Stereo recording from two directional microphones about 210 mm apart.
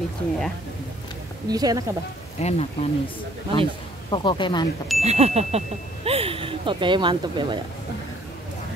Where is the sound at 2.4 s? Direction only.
30° left (ahead or behind).